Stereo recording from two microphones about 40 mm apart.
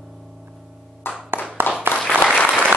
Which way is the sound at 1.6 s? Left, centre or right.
Left.